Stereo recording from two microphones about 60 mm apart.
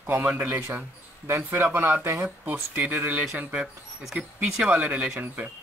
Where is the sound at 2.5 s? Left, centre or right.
Right.